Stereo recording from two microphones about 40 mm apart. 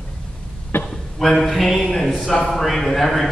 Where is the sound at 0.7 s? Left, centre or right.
Left.